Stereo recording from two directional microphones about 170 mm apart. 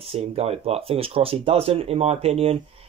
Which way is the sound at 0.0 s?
35° right (ahead or behind).